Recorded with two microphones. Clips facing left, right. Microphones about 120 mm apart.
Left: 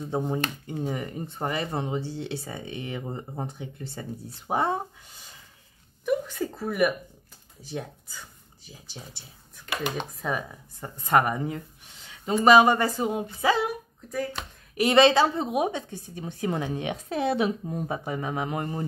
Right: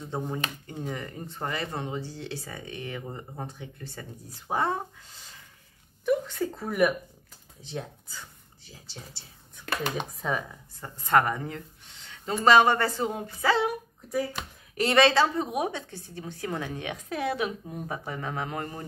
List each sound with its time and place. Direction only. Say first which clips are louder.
0.1 s speech: left 4 dB; 20° left (ahead or behind)
6.0 s speech: even; 5° left (ahead or behind)
8.6 s speech: left 2 dB; 15° left (ahead or behind)
9.6 s speech: even; centre (ahead or behind)
10.8 s speech: left 1 dB; 15° left (ahead or behind)
14.1 s speech: right 1 dB; 5° right (ahead or behind)
14.8 s speech: left 3 dB; 15° left (ahead or behind)